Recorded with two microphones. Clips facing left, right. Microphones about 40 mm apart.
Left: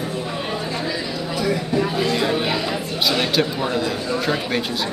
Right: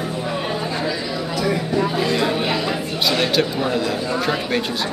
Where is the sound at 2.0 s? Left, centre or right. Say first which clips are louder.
Right 1 dB; centre.